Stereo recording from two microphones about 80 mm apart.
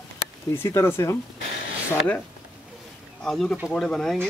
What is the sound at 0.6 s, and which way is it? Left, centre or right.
Speech, left.